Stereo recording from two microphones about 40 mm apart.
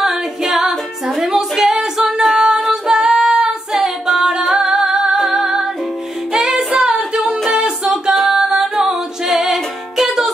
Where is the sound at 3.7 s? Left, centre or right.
Centre.